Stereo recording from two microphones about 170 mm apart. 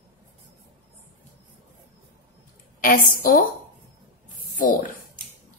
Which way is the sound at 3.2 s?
55° left (ahead or behind).